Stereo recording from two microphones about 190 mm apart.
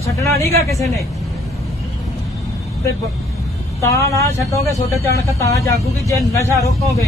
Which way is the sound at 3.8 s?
15° left (ahead or behind).